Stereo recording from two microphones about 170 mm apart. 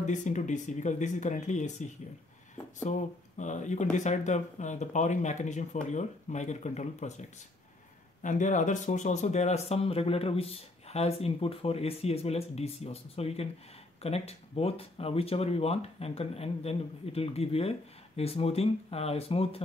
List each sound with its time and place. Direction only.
0.0 s speech: 45° left (ahead or behind)